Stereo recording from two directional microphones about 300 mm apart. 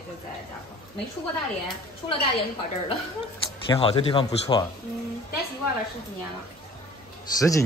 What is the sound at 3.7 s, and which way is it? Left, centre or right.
Speech, centre.